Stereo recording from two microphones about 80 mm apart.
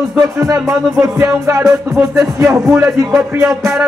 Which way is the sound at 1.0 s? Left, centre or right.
Right.